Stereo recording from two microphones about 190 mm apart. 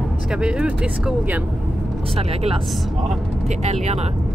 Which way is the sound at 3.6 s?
35° right (ahead or behind).